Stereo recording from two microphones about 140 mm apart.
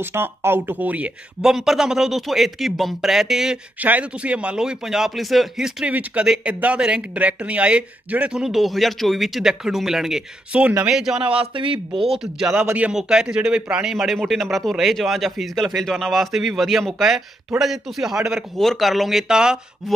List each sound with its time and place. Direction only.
0.0 s speech: 15° right (ahead or behind)
11.2 s a man's voice: 40° right (ahead or behind)
12.4 s speech: 15° right (ahead or behind)